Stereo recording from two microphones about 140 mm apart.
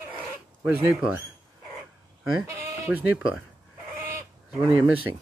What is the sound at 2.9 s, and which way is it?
Speech, 10° right (ahead or behind).